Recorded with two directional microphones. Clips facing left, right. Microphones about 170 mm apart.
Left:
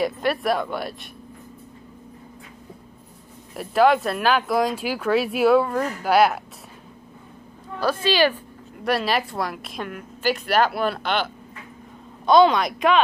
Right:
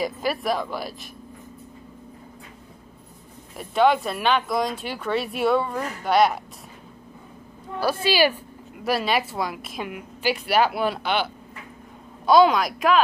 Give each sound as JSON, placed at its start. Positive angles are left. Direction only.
{"t": 0.0, "sound": "speech", "side_deg": 0}
{"t": 3.5, "sound": "speech", "side_deg": 0}
{"t": 7.8, "sound": "speech", "side_deg": -10}
{"t": 12.3, "sound": "speech", "side_deg": -5}